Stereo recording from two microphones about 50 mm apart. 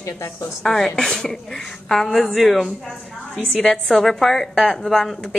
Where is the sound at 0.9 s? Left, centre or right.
Centre.